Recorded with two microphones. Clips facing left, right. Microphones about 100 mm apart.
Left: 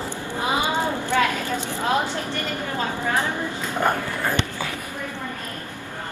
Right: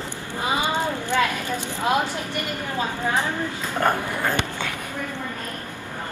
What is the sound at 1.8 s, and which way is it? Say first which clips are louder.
A woman's voice: right 1 dB; 15° right (ahead or behind).